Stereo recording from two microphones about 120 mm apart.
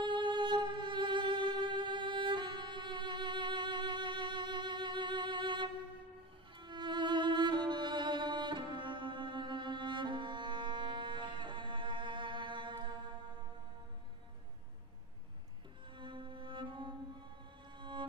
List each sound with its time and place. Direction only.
0.0 s music: 40° right (ahead or behind)
16.0 s cello: 45° right (ahead or behind)
17.7 s music: 40° right (ahead or behind)